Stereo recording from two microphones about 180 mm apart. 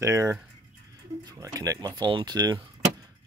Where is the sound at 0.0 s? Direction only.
15° right (ahead or behind).